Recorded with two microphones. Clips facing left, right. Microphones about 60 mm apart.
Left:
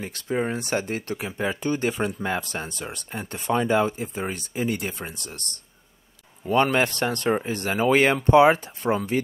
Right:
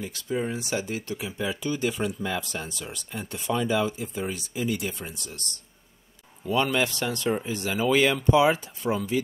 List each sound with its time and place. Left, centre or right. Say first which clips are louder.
0.0 s speech: left 3 dB; left